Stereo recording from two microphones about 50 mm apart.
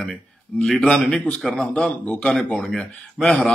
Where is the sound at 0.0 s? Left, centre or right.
Centre.